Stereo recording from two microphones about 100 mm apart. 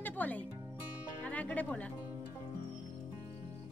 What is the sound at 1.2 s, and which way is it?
Speech, 15° left (ahead or behind).